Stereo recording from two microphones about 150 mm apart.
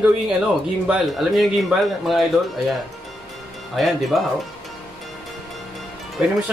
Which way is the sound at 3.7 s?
Centre (ahead or behind).